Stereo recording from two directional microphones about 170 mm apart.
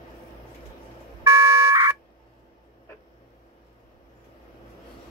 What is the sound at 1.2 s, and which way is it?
Car alarm, 15° right (ahead or behind).